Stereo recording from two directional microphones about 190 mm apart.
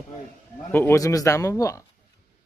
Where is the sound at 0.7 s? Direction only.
15° left (ahead or behind).